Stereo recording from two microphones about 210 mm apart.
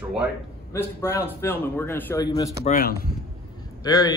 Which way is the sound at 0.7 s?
10° left (ahead or behind).